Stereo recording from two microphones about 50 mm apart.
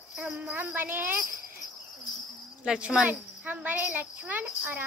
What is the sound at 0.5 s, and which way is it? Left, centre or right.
Speech, right.